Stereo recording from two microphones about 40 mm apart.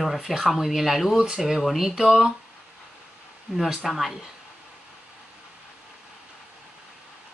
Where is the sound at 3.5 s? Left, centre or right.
Centre.